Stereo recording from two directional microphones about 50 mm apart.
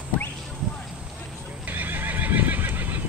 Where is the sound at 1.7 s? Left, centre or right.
Right.